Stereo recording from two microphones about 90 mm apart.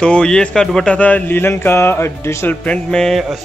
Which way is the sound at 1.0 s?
15° left (ahead or behind).